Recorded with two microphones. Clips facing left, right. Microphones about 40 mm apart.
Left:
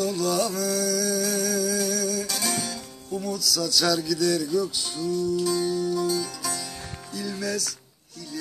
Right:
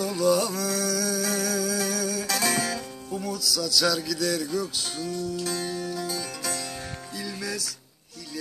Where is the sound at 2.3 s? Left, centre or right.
Right.